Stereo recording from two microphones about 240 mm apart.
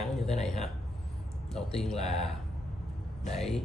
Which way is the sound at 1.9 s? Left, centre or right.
Left.